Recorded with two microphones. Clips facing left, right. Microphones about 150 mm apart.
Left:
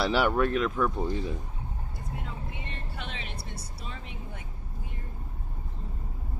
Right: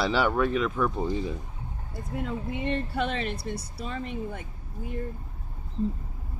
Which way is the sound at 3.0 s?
65° right (ahead or behind).